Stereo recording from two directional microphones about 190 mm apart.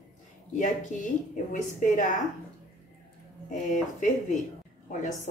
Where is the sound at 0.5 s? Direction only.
40° left (ahead or behind).